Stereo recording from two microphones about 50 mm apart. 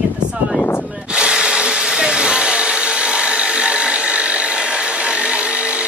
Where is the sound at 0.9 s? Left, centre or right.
Centre.